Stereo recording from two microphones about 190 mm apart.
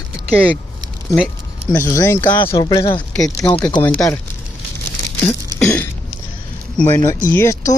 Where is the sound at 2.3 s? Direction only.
25° left (ahead or behind).